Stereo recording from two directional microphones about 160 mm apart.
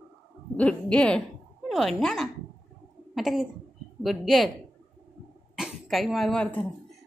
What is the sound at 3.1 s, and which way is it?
Cough, centre (ahead or behind).